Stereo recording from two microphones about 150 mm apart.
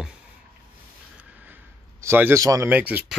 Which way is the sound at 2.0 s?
15° right (ahead or behind).